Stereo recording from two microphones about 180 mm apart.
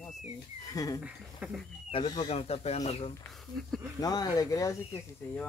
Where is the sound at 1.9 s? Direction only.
25° left (ahead or behind).